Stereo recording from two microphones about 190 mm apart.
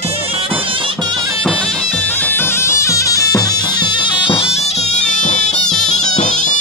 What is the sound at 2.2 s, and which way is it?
Bagpipes, 10° left (ahead or behind).